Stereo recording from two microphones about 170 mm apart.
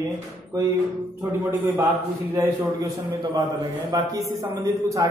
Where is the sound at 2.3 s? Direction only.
15° right (ahead or behind).